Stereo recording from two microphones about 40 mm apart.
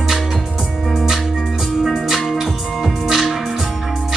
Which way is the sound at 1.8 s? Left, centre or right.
Centre.